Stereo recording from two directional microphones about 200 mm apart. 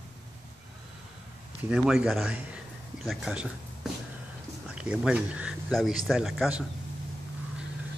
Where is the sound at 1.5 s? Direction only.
5° right (ahead or behind).